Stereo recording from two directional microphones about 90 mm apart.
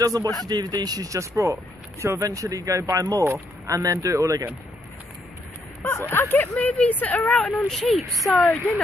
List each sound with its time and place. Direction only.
0.0 s speech: 45° right (ahead or behind)
5.8 s speech: 35° left (ahead or behind)
6.0 s speech: 25° left (ahead or behind)
7.7 s speech: centre (ahead or behind)